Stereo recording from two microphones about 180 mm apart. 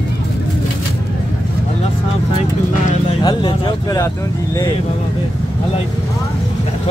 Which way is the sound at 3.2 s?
20° left (ahead or behind).